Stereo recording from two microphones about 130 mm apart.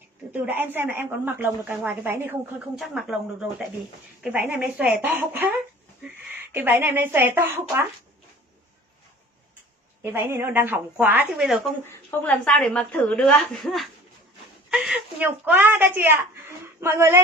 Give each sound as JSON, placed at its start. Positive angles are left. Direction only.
{"t": 0.3, "sound": "speech", "side_deg": -15}
{"t": 2.8, "sound": "a woman's voice", "side_deg": -5}
{"t": 10.1, "sound": "speech", "side_deg": -20}
{"t": 11.8, "sound": "a woman's voice", "side_deg": 15}